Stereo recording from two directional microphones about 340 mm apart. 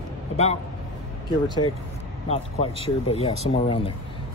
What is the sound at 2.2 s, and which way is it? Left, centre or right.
Speech, centre.